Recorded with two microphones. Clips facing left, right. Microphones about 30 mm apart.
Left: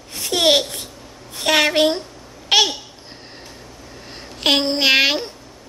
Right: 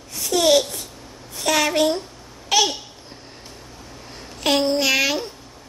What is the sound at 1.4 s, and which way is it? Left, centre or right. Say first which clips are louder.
Speech: left 3 dB; left.